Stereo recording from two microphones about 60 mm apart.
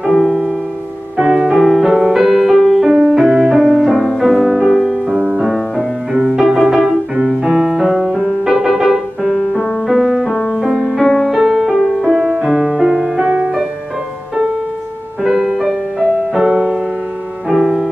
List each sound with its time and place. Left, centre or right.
1.1 s music: centre
2.9 s music: centre
5.1 s music: centre
10.2 s music: centre
10.5 s music: centre
10.8 s music: centre
15.2 s music: centre